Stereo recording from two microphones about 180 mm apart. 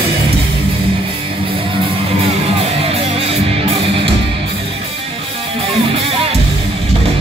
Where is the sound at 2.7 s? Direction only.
30° right (ahead or behind).